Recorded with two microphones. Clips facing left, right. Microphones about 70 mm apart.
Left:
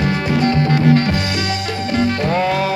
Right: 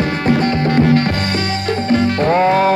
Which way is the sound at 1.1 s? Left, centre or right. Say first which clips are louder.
Right 1 dB; right.